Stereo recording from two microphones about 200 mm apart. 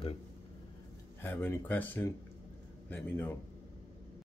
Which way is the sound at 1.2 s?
10° left (ahead or behind).